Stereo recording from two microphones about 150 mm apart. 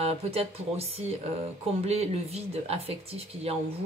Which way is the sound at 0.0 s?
45° right (ahead or behind).